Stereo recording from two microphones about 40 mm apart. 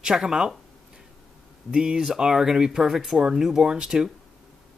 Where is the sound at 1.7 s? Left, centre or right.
Centre.